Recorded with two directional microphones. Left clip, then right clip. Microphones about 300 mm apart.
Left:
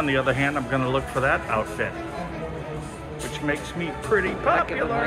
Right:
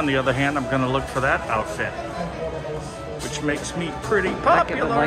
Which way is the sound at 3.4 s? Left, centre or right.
Centre.